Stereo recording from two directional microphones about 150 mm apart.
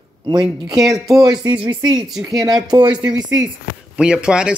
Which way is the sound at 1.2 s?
30° right (ahead or behind).